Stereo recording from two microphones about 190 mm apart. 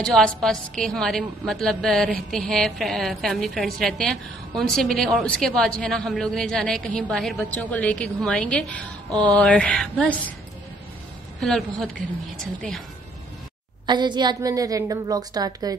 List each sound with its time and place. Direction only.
0.0 s a woman's voice: 5° left (ahead or behind)
11.3 s a woman's voice: centre (ahead or behind)
13.8 s a woman's voice: 25° right (ahead or behind)